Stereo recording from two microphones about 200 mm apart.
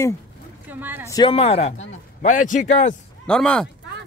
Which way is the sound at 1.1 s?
25° left (ahead or behind).